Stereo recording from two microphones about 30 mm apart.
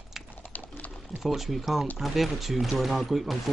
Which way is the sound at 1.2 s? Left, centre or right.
Centre.